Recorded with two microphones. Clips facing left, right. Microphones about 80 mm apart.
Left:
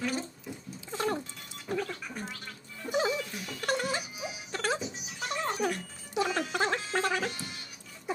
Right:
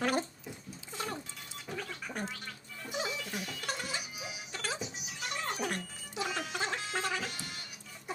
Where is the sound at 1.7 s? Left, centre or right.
Left.